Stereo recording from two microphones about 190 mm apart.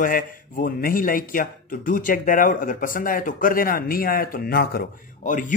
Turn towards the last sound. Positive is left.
turn(degrees=45)  # may be behind; listen again after turning